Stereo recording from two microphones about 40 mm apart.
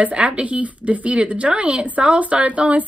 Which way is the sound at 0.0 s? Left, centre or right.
Right.